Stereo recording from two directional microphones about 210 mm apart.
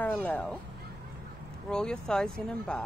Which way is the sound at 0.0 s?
10° left (ahead or behind).